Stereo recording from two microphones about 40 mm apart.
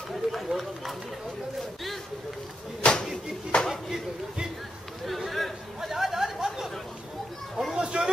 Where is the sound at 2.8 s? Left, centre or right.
Left.